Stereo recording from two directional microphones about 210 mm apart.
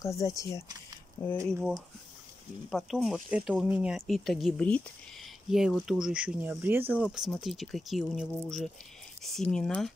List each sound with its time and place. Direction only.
0.0 s speech: 15° left (ahead or behind)
2.7 s speech: centre (ahead or behind)